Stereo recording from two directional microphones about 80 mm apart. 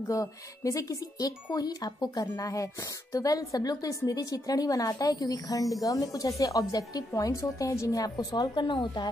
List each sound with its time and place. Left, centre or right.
0.1 s speech: left
8.5 s speech: left